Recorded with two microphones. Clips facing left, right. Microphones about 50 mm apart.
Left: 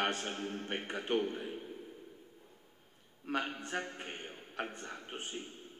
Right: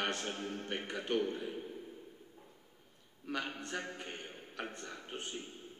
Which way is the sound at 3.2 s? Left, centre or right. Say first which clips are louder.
Left 3 dB; left.